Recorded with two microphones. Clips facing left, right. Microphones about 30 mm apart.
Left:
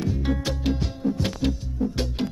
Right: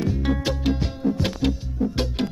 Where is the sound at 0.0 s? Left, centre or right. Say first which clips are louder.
Right 2 dB; centre.